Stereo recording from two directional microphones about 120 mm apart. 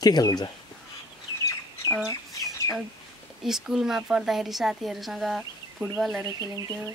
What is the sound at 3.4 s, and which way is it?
Speech, 5° right (ahead or behind).